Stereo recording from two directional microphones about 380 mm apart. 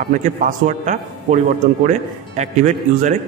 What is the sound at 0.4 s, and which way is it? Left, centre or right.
Speech, centre.